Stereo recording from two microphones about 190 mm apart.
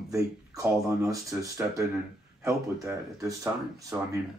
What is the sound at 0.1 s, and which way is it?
Speech, 15° right (ahead or behind).